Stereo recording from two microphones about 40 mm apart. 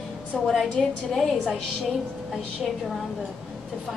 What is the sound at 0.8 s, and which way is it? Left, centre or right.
Speech, centre.